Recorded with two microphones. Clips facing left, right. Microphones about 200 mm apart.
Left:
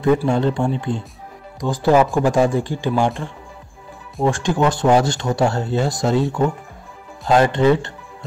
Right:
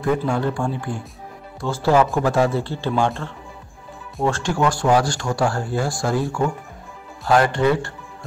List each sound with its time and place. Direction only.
0.0 s speech: 20° left (ahead or behind)